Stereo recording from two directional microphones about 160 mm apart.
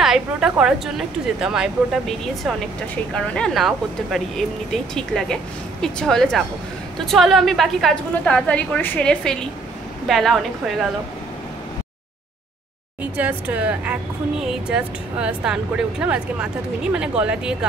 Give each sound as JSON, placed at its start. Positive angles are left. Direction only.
{"t": 0.0, "sound": "a woman's voice", "side_deg": -5}
{"t": 13.0, "sound": "a woman's voice", "side_deg": -10}